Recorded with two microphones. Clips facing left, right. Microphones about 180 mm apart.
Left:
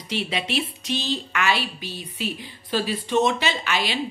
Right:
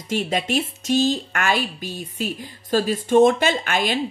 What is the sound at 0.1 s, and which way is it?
A woman's voice, 45° right (ahead or behind).